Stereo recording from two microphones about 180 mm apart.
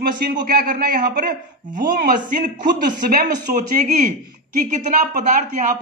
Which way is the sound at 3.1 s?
50° right (ahead or behind).